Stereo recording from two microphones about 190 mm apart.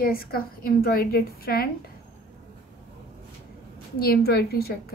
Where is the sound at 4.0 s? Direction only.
55° left (ahead or behind).